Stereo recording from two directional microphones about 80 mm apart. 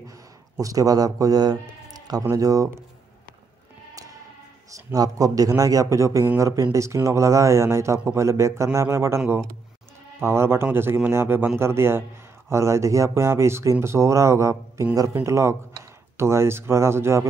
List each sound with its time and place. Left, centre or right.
0.6 s a man's voice: right
4.6 s a man's voice: right
10.2 s speech: right